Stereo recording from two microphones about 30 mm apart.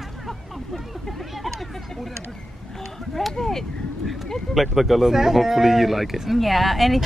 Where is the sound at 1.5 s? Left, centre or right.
Centre.